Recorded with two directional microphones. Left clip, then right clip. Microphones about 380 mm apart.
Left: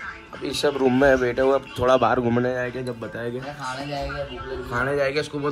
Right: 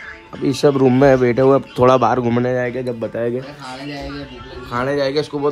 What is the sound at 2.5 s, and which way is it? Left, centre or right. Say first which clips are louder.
Speech: right 7 dB; right.